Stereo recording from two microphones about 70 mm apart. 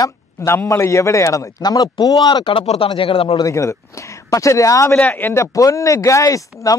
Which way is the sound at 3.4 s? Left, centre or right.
Left.